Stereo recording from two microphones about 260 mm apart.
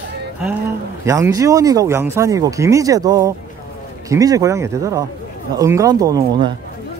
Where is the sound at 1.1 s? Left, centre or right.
Centre.